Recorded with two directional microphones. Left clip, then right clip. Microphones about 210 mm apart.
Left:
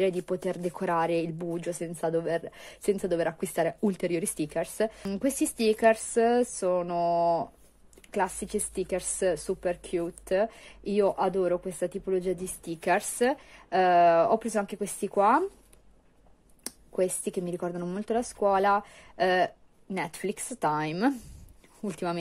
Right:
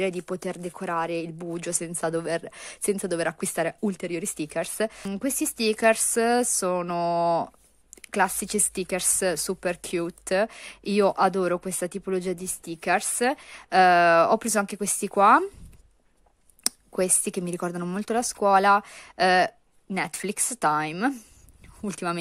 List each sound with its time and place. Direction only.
0.0 s speech: 15° right (ahead or behind)
16.6 s speech: 25° right (ahead or behind)